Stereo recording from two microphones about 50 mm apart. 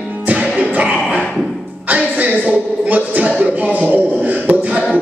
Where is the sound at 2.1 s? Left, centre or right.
Right.